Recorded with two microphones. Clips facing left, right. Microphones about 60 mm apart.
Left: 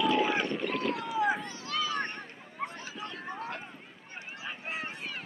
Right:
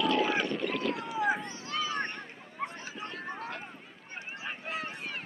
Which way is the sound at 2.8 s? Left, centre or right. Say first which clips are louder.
Even; right.